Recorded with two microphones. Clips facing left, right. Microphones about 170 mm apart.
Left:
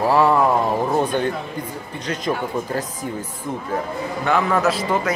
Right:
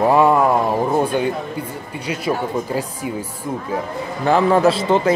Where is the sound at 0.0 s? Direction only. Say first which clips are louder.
Right 2 dB; 15° right (ahead or behind).